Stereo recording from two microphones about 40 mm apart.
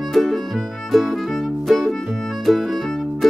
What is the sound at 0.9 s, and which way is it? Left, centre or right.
Music, centre.